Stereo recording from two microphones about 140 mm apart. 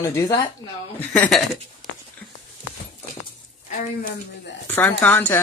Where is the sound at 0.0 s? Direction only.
25° left (ahead or behind).